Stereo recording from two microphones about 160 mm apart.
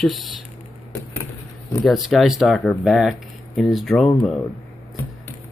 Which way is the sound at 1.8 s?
Centre (ahead or behind).